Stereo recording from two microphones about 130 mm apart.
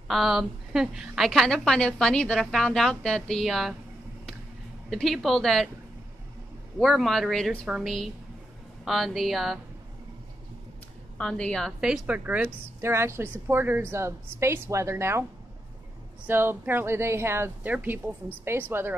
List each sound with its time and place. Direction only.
0.1 s a woman's voice: centre (ahead or behind)
4.8 s a woman's voice: centre (ahead or behind)
6.8 s a woman's voice: centre (ahead or behind)
11.1 s a woman's voice: 10° left (ahead or behind)
11.8 s a woman's voice: 10° right (ahead or behind)
16.3 s a woman's voice: 15° right (ahead or behind)